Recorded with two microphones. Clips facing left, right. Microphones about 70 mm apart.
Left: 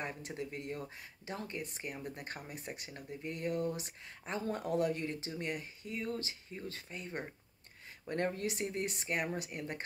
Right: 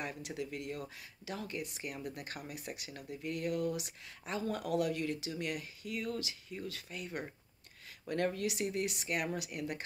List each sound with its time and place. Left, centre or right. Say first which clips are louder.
0.0 s speech: even; left